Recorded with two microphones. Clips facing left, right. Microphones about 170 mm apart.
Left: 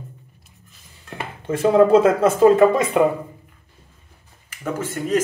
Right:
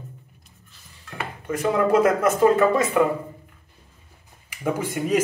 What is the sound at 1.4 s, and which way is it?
Speech, 30° left (ahead or behind).